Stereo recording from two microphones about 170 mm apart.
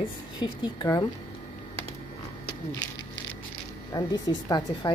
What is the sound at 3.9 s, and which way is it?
A woman's voice, 25° left (ahead or behind).